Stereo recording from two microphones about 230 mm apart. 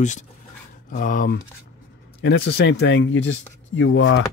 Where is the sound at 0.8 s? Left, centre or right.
Left.